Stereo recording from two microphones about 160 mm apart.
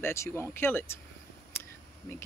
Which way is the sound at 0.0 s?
15° left (ahead or behind).